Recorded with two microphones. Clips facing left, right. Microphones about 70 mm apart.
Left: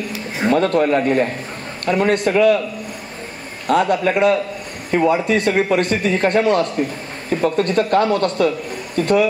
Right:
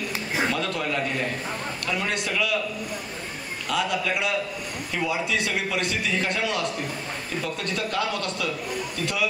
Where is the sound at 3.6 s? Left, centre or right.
Left.